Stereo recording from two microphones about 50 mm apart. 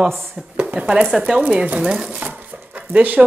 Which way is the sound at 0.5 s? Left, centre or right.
Right.